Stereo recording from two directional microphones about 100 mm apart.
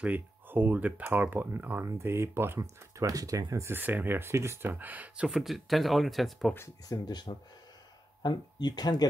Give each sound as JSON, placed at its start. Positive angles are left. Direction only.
{"t": 0.0, "sound": "speech", "side_deg": -15}
{"t": 6.9, "sound": "speech", "side_deg": 45}